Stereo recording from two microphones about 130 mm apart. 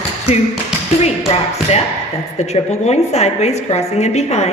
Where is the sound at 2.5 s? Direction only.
55° left (ahead or behind).